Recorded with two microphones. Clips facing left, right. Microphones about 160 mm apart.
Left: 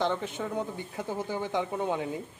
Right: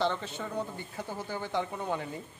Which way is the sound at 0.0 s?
15° left (ahead or behind).